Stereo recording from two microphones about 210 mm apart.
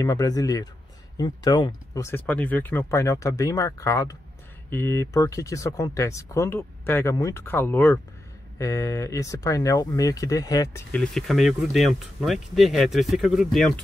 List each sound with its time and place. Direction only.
0.0 s speech: 15° left (ahead or behind)